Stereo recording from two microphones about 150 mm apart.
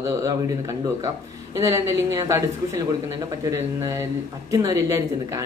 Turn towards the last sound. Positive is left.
turn(degrees=-20)  # may be behind; listen again after turning